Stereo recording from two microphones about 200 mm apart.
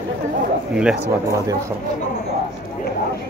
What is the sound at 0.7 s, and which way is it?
Speech, 5° right (ahead or behind).